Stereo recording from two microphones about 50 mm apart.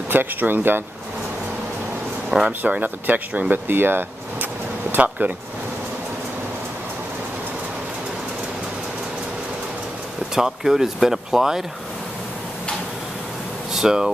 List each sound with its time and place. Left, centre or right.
0.1 s speech: right
2.6 s speech: right
10.3 s speech: centre
13.7 s speech: centre